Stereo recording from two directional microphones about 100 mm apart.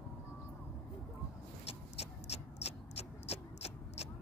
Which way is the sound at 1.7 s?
90° left.